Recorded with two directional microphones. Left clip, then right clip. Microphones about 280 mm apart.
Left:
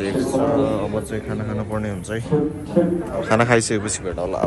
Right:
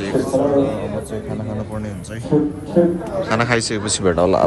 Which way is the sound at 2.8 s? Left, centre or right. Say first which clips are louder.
Right 4 dB; right.